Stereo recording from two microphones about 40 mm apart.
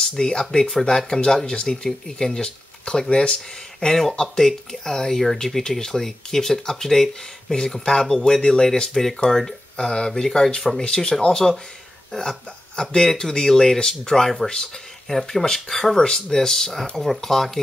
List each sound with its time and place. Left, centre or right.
0.0 s speech: centre
10.2 s speech: centre